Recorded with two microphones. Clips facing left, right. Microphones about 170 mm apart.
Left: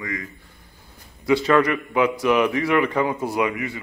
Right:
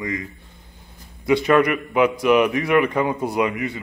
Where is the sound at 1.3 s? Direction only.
20° right (ahead or behind).